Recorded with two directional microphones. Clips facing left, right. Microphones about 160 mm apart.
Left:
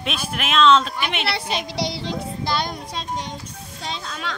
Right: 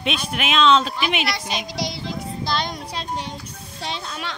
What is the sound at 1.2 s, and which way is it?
Speech, 30° left (ahead or behind).